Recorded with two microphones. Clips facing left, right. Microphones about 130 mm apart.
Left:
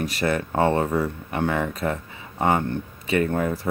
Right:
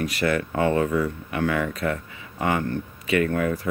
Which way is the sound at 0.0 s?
30° left (ahead or behind).